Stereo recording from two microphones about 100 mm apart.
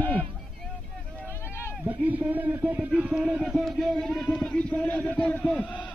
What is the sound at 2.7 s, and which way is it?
A man's voice, 5° right (ahead or behind).